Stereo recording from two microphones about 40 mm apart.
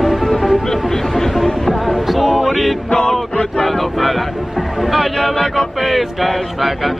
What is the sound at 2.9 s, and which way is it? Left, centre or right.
Music, centre.